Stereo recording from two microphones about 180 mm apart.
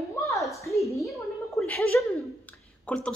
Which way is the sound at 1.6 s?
Centre (ahead or behind).